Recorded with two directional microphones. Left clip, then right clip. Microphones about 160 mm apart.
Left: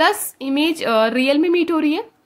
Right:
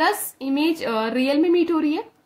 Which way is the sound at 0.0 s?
25° left (ahead or behind).